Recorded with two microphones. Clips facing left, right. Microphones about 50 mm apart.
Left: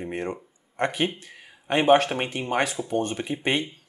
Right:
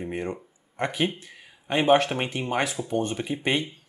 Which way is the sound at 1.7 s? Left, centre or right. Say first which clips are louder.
Left 1 dB; centre.